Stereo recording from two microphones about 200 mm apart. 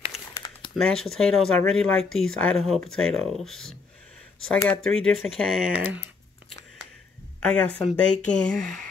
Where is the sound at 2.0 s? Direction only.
90° left.